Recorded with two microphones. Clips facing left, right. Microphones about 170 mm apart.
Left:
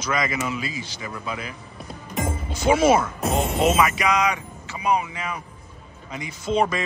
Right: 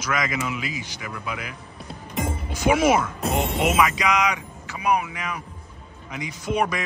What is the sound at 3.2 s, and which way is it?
Music, centre (ahead or behind).